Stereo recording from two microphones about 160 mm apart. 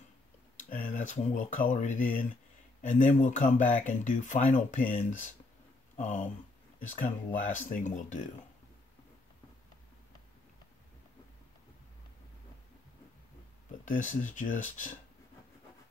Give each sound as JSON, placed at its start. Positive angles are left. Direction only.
{"t": 0.6, "sound": "speech", "side_deg": 60}
{"t": 13.8, "sound": "speech", "side_deg": 50}